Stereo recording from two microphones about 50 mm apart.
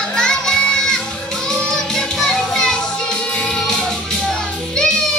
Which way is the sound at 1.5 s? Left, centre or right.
Centre.